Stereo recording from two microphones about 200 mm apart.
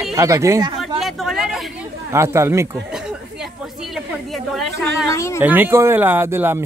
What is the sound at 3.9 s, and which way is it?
Speech, centre (ahead or behind).